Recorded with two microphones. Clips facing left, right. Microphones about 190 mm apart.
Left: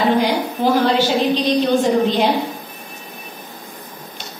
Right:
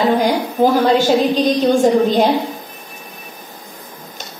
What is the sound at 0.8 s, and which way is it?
A woman's voice, 45° right (ahead or behind).